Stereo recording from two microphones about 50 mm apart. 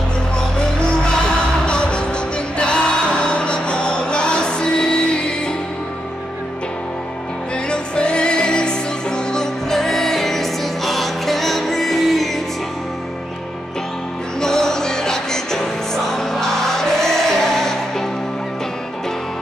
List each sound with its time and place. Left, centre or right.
1.7 s music: centre
7.7 s music: centre
14.4 s music: centre